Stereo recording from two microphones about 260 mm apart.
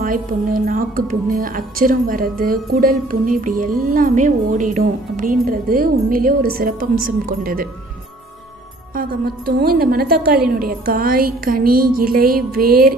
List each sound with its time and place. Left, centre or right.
0.0 s a woman's voice: right
8.9 s a woman's voice: right